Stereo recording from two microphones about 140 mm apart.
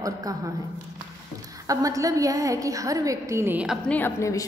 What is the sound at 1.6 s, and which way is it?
A woman's voice, 25° right (ahead or behind).